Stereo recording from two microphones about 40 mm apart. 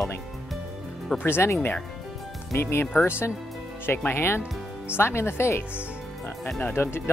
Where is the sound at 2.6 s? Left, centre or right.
Left.